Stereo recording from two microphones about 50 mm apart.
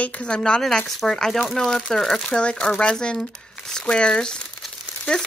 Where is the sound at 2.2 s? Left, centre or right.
Centre.